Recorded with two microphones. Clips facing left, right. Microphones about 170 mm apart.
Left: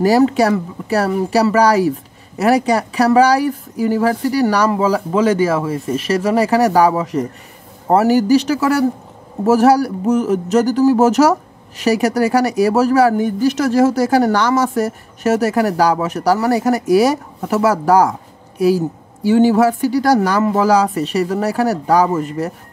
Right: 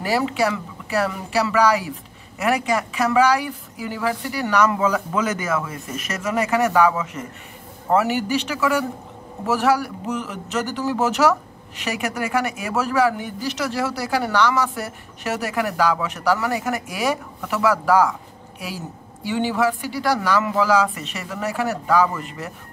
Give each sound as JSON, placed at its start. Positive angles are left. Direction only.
{"t": 0.0, "sound": "speech", "side_deg": 40}
{"t": 19.2, "sound": "speech", "side_deg": 40}